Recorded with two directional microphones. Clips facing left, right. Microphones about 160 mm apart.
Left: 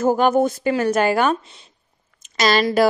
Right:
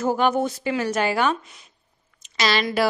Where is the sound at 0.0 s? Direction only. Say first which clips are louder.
Left 5 dB; 45° left (ahead or behind).